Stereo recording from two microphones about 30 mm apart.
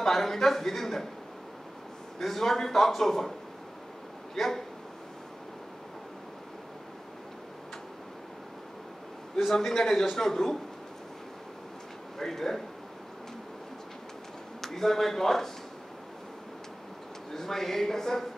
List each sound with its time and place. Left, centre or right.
0.0 s a man's voice: centre
2.1 s a man's voice: centre
4.4 s a man's voice: centre
9.5 s a man's voice: centre
12.2 s a man's voice: centre
14.6 s speech: centre
17.3 s a man's voice: centre